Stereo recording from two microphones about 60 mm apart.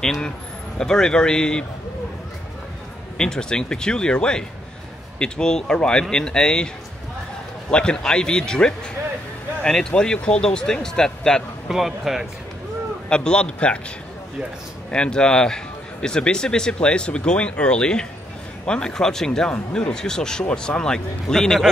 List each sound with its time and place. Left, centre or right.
0.0 s a man's voice: centre
3.2 s a man's voice: centre
7.7 s a man's voice: centre
11.7 s speech: centre
13.1 s a man's voice: centre
14.9 s a man's voice: centre